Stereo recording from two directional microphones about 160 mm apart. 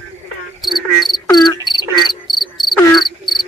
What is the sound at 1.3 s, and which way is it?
Insect, 25° left (ahead or behind).